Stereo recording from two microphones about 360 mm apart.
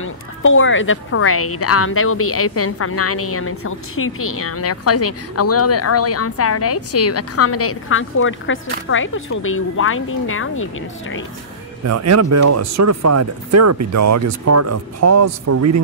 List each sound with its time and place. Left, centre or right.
0.0 s a woman's voice: left
11.8 s speech: right